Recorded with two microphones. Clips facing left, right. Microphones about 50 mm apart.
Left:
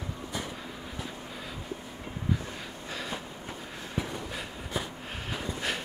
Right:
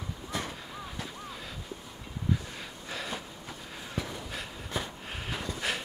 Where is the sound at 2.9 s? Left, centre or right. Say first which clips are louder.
Even; centre.